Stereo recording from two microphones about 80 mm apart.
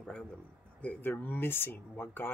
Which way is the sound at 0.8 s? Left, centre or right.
Left.